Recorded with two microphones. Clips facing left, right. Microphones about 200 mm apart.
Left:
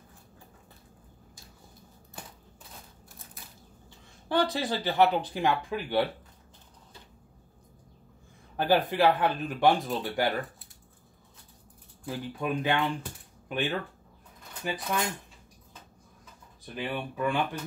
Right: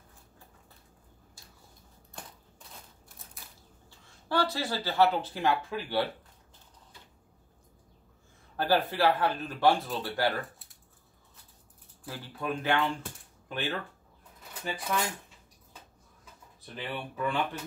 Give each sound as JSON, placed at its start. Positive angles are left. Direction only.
{"t": 2.2, "sound": "a sound", "side_deg": 5}
{"t": 4.3, "sound": "speech", "side_deg": 20}
{"t": 8.5, "sound": "speech", "side_deg": 15}
{"t": 12.0, "sound": "speech", "side_deg": 15}
{"t": 16.7, "sound": "speech", "side_deg": 10}